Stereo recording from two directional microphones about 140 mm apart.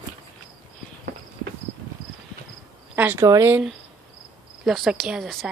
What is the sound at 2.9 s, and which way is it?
Speech, 10° right (ahead or behind).